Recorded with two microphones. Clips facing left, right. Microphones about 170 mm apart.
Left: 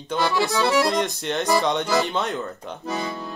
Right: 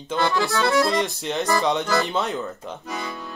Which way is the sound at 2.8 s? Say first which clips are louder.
Left 5 dB; 35° left (ahead or behind).